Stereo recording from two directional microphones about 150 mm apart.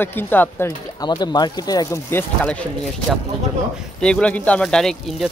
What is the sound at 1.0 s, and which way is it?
Speech, 30° left (ahead or behind).